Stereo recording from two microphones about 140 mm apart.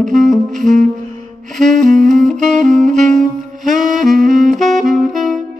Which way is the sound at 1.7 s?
65° right (ahead or behind).